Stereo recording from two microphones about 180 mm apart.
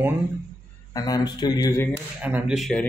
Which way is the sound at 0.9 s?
20° left (ahead or behind).